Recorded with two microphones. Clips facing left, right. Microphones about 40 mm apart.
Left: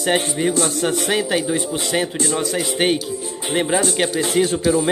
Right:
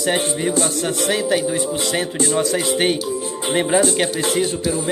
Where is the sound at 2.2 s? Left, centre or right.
Centre.